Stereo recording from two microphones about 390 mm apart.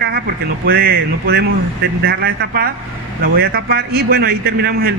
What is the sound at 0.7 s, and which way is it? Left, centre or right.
A man's voice, right.